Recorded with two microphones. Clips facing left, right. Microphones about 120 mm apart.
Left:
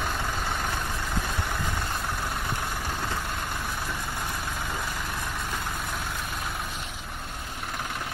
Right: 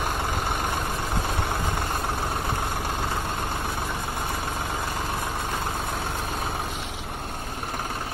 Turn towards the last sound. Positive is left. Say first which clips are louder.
# right 4 dB
turn(degrees=-30)  # may be behind; listen again after turning